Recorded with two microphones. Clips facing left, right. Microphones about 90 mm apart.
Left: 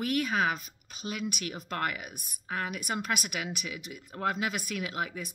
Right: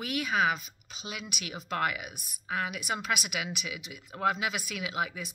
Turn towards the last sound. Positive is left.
turn(degrees=45)  # may be behind; listen again after turning